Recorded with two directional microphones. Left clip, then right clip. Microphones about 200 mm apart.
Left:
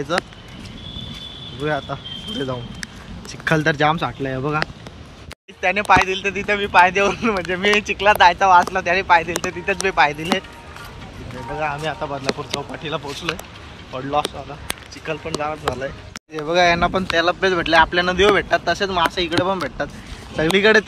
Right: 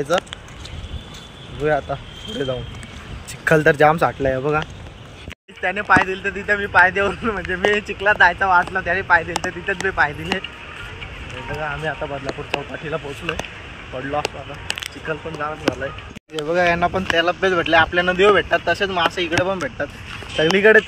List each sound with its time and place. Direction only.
1.6 s speech: 15° left (ahead or behind)
5.6 s speech: 20° left (ahead or behind)
11.5 s speech: 25° left (ahead or behind)
15.0 s speech: 15° left (ahead or behind)